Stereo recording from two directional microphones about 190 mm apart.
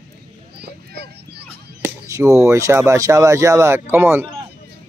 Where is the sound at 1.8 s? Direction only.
15° right (ahead or behind).